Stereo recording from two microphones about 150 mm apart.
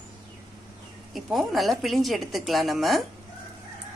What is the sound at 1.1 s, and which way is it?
A woman's voice, centre (ahead or behind).